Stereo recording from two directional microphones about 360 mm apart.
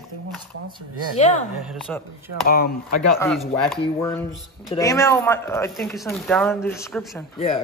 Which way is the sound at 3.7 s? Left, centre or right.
Centre.